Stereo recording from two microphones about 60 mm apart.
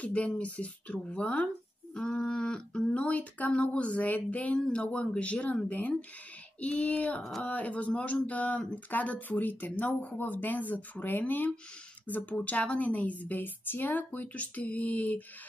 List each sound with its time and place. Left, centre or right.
0.0 s speech: left
2.0 s speech: centre
7.2 s speech: centre
7.4 s speech: left